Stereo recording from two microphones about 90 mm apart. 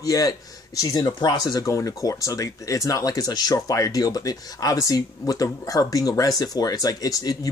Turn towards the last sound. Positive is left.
turn(degrees=45)  # may be behind; listen again after turning